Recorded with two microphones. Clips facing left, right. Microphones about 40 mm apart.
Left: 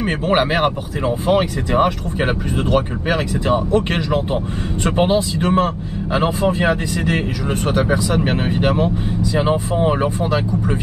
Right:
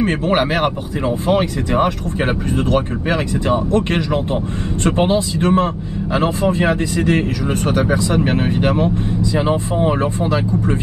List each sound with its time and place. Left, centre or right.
0.0 s speech: centre